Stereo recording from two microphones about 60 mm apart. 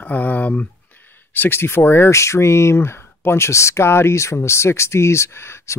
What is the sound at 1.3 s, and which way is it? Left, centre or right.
Speech, left.